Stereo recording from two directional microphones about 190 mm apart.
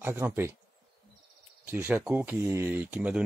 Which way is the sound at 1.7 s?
10° right (ahead or behind).